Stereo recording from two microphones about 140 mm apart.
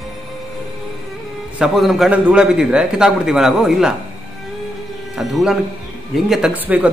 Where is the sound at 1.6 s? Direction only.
Centre (ahead or behind).